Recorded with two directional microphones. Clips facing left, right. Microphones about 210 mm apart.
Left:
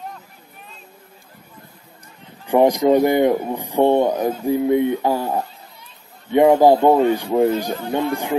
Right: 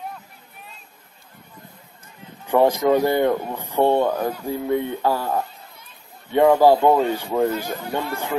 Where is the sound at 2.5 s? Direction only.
15° left (ahead or behind).